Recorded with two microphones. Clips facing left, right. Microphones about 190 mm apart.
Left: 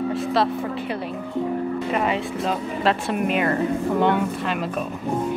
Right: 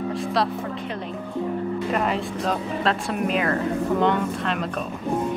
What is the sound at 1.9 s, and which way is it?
Speech, centre (ahead or behind).